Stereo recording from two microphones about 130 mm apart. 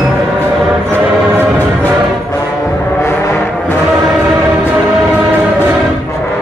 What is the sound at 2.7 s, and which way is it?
Foghorn, 20° left (ahead or behind).